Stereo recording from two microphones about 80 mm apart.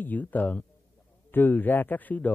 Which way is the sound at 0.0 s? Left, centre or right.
Left.